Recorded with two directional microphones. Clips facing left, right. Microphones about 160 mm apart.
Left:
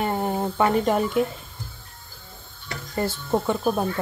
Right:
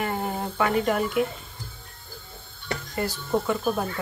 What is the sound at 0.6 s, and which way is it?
Speech, 30° left (ahead or behind).